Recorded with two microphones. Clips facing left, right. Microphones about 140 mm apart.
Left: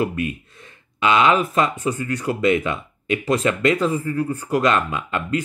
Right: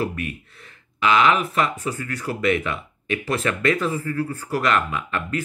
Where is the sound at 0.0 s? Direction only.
20° left (ahead or behind).